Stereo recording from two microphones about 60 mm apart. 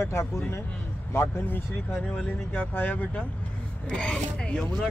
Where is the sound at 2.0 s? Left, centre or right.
Left.